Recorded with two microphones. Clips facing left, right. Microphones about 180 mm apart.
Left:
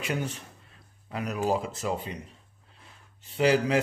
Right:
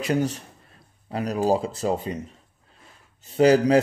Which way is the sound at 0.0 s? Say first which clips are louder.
Right 8 dB; 40° right (ahead or behind).